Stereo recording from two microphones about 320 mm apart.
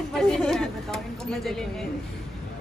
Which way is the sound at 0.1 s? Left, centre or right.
Centre.